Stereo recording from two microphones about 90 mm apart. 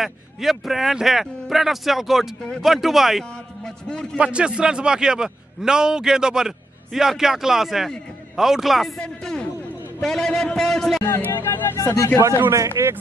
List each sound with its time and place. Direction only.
0.0 s a man's voice: 5° right (ahead or behind)
4.2 s a man's voice: 10° right (ahead or behind); by 11.1 s 5° left (ahead or behind)
11.1 s music: 25° left (ahead or behind)
11.8 s speech: 35° left (ahead or behind)
12.2 s a man's voice: 30° right (ahead or behind)